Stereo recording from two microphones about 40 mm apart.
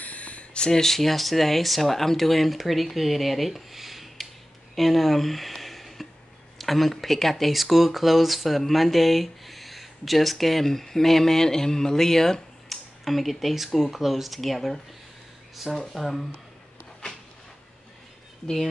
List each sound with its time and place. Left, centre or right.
0.0 s a sound: left
0.6 s speech: centre
15.9 s speech: centre